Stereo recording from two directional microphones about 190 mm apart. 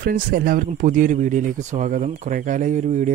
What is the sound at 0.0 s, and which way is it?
Speech, 45° right (ahead or behind).